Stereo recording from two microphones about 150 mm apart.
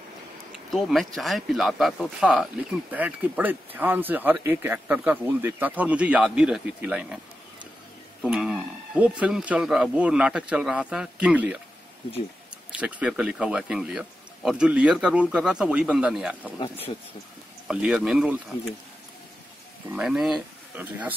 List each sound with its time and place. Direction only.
0.7 s speech: centre (ahead or behind)
8.2 s a sound: 5° right (ahead or behind)
9.2 s speech: 10° right (ahead or behind)
12.7 s speech: 10° right (ahead or behind)
16.5 s speech: 35° left (ahead or behind)
17.6 s speech: 5° right (ahead or behind)
19.9 s speech: 5° right (ahead or behind)